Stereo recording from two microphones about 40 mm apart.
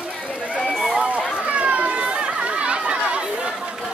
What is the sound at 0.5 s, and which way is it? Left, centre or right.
Run, centre.